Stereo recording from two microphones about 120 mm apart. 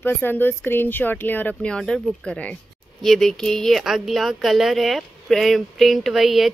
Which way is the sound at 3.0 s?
Centre (ahead or behind).